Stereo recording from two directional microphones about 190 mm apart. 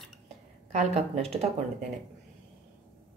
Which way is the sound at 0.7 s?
35° right (ahead or behind).